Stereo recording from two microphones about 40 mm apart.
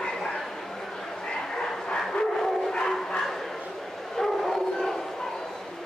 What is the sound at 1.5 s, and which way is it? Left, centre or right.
Bow-wow, centre.